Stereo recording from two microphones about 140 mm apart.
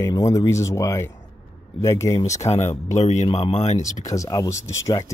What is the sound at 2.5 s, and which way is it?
Speech, 55° left (ahead or behind).